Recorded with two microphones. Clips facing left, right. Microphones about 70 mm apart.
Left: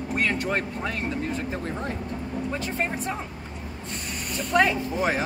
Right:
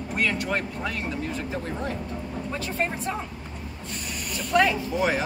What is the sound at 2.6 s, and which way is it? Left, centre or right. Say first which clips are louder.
Speech: even; left.